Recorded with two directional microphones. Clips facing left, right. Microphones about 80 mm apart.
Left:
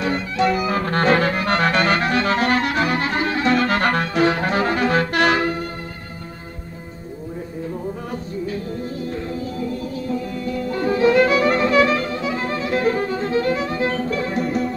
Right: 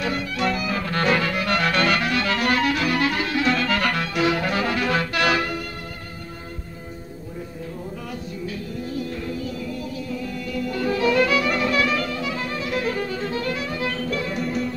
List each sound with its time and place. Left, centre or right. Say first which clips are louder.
0.6 s music: left 5 dB; left
3.5 s music: left 4 dB; left
8.8 s music: left 2 dB; left
14.4 s music: left 4 dB; left